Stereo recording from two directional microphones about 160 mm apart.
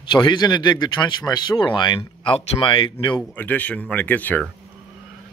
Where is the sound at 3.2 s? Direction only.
10° left (ahead or behind).